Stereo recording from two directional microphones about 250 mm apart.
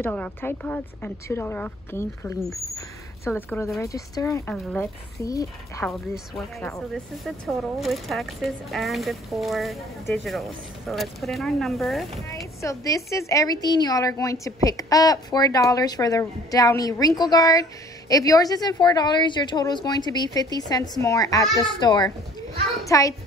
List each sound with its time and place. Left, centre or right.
0.0 s a woman's voice: centre
4.6 s speech: centre
5.2 s a woman's voice: centre
6.9 s speech: centre
12.6 s a woman's voice: centre